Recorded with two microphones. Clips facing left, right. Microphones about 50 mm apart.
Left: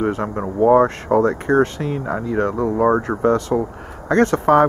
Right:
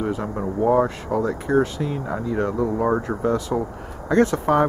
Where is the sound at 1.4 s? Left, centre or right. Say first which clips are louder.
Left 4 dB; left.